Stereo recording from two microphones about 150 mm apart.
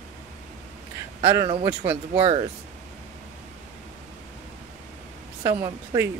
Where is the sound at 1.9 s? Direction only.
35° right (ahead or behind).